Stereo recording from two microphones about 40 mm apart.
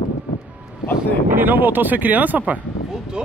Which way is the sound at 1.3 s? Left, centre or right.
Right.